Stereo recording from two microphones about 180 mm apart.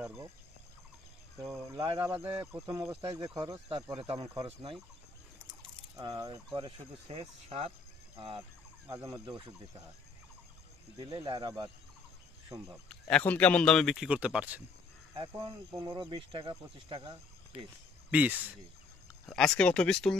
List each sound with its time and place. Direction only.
1.4 s speech: 15° right (ahead or behind)
3.0 s speech: 30° right (ahead or behind)
3.3 s speech: 20° right (ahead or behind)
5.9 s speech: 20° right (ahead or behind)
8.8 s speech: 20° right (ahead or behind)
11.0 s speech: 25° right (ahead or behind)
13.1 s speech: 5° left (ahead or behind); by 14.6 s 10° right (ahead or behind)
15.1 s speech: 25° right (ahead or behind)
18.1 s speech: 10° right (ahead or behind)
19.2 s speech: 5° left (ahead or behind)